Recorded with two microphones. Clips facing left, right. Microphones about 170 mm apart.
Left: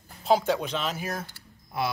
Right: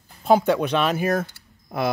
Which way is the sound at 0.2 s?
55° right (ahead or behind).